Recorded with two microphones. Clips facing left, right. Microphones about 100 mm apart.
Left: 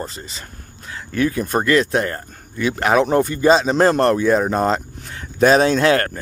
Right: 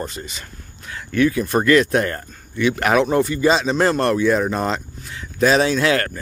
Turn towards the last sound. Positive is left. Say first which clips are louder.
# left 3 dB
turn(degrees=35)  # may be behind; listen again after turning